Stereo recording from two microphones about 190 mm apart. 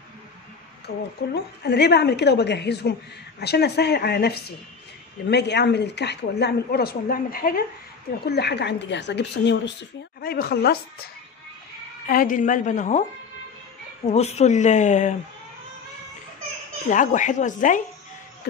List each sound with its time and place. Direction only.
0.8 s speech: 60° left (ahead or behind)
8.3 s speech: 60° left (ahead or behind)
12.1 s speech: 45° left (ahead or behind)
14.0 s speech: 35° left (ahead or behind)
16.9 s speech: 40° left (ahead or behind)